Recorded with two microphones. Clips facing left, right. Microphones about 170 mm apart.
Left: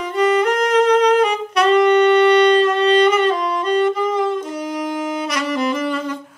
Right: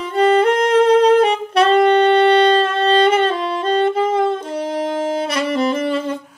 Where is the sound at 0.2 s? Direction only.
30° right (ahead or behind).